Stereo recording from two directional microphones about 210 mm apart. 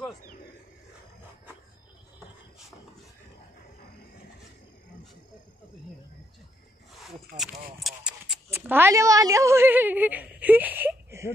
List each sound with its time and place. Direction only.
7.3 s speech: 40° right (ahead or behind)
7.8 s a woman's voice: centre (ahead or behind)